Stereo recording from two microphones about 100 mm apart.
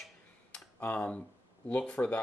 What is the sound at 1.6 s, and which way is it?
Speech, 10° left (ahead or behind).